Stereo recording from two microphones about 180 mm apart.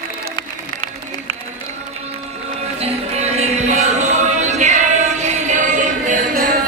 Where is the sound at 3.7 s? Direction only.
40° right (ahead or behind).